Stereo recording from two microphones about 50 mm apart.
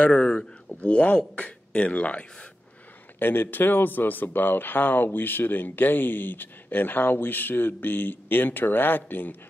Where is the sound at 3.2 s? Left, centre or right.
Left.